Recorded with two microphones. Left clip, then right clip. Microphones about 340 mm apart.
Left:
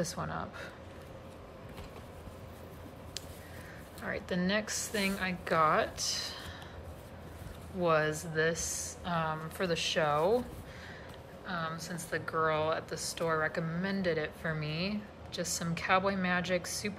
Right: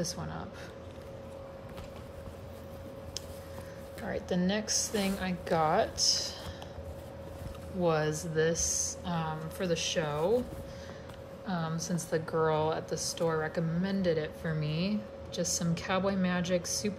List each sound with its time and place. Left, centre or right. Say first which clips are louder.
0.0 s speech: left 1 dB; centre
4.0 s a woman's voice: right 2 dB; centre
7.8 s a woman's voice: left 1 dB; centre
11.4 s a woman's voice: right 1 dB; centre